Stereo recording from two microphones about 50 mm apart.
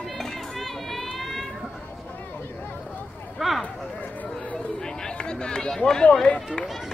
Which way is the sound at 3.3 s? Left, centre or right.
Centre.